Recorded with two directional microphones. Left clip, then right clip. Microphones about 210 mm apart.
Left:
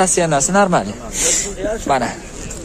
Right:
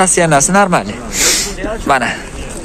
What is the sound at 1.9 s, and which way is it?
Speech, 10° left (ahead or behind).